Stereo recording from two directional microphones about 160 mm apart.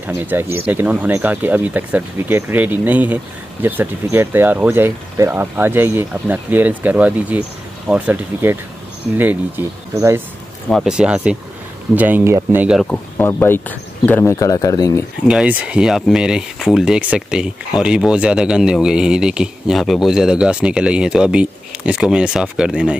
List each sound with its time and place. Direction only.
0.3 s speech: 15° right (ahead or behind)
10.7 s speech: 5° right (ahead or behind)
12.9 s speech: 15° left (ahead or behind)
15.2 s speech: 5° right (ahead or behind)